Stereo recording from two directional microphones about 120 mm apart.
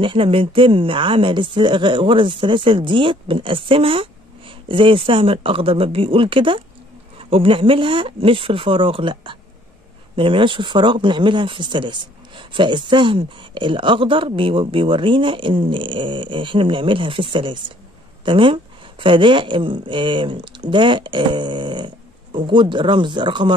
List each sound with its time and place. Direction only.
0.0 s speech: 45° right (ahead or behind)